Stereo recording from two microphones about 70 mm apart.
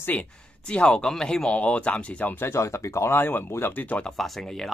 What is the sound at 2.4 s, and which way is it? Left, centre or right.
Speech, left.